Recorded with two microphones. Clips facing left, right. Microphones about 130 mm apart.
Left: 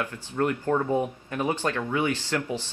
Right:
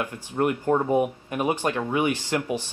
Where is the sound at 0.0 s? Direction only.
15° right (ahead or behind).